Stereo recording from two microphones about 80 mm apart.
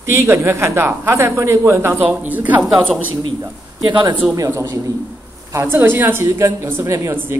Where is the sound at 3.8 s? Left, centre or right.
Right.